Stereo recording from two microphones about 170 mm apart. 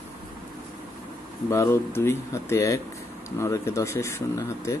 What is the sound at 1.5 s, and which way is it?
Speech, 15° left (ahead or behind).